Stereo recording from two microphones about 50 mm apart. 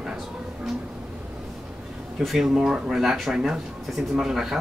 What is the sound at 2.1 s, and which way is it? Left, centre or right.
Speech, centre.